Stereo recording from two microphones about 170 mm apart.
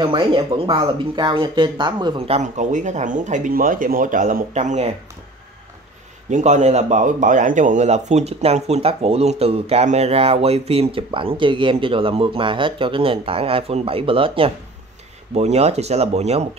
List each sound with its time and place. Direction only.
0.0 s speech: 30° right (ahead or behind)
6.3 s speech: 45° right (ahead or behind)